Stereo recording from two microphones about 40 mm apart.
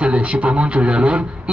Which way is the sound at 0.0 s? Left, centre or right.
Right.